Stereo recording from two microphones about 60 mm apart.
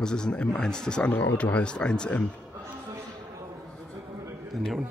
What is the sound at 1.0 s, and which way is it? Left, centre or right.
Speech, left.